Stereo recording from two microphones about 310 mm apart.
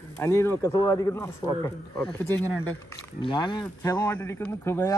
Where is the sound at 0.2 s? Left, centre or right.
Centre.